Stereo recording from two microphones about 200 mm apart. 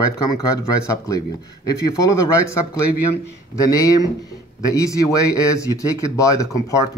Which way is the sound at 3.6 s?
20° left (ahead or behind).